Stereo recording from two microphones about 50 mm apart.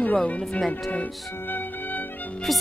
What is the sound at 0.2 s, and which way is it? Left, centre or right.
Speech, centre.